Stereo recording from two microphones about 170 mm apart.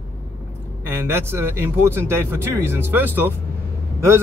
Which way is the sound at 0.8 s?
15° right (ahead or behind).